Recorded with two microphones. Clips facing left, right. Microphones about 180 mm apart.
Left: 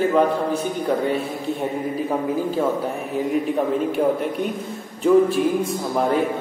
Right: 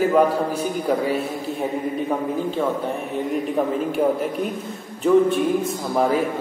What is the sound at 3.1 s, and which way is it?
A man's voice, centre (ahead or behind).